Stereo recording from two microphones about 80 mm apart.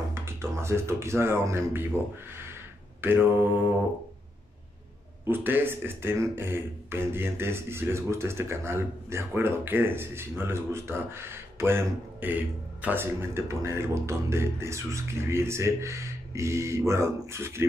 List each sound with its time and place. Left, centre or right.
0.1 s speech: right
3.0 s mantra: right
5.2 s a man's voice: right